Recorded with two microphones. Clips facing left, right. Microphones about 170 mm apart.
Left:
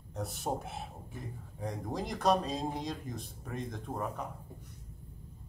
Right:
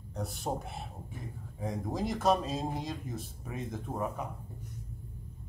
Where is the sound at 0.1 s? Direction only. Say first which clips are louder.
Even; centre (ahead or behind).